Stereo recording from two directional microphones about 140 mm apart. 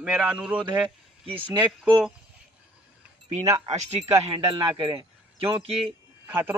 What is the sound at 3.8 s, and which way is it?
Speech, 45° right (ahead or behind).